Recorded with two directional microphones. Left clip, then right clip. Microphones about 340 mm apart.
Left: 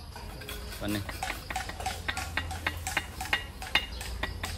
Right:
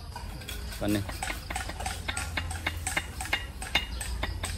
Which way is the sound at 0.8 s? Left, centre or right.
Centre.